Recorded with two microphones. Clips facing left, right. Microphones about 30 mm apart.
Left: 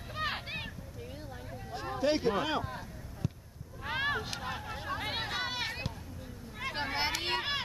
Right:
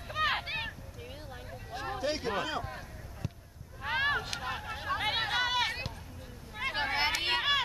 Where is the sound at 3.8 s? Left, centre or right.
Centre.